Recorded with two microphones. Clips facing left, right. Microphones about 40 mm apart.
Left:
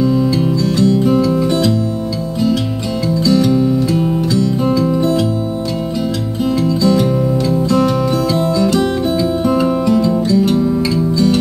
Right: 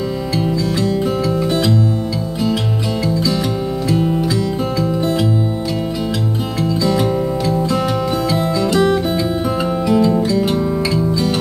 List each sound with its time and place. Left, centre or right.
0.7 s music: centre
1.0 s music: centre
3.3 s music: centre
6.8 s music: centre